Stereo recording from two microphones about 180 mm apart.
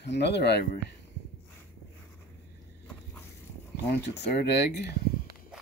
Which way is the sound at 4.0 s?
70° left (ahead or behind).